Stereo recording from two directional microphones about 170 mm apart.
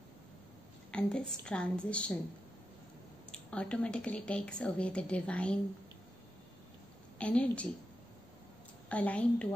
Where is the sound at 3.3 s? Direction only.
5° left (ahead or behind).